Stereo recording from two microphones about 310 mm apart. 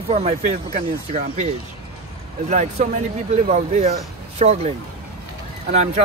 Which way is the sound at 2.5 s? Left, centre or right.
Right.